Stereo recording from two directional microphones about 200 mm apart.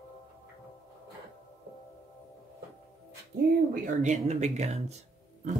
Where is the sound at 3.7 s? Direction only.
35° right (ahead or behind).